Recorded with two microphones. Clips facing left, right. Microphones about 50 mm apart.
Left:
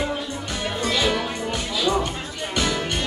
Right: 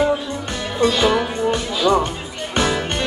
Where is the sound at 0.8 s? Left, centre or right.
Right.